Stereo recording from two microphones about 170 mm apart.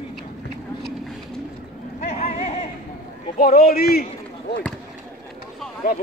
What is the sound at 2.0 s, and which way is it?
Vehicle, 40° left (ahead or behind).